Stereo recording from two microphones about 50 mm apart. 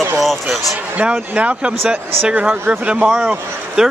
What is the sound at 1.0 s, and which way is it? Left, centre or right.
Speech, right.